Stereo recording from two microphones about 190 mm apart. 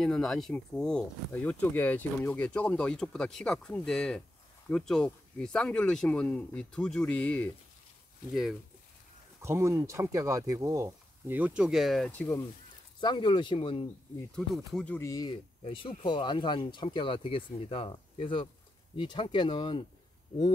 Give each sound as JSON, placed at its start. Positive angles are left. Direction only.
{"t": 0.0, "sound": "speech", "side_deg": 0}
{"t": 9.4, "sound": "speech", "side_deg": -15}
{"t": 13.0, "sound": "speech", "side_deg": 25}
{"t": 14.3, "sound": "speech", "side_deg": 0}
{"t": 15.0, "sound": "speech", "side_deg": 20}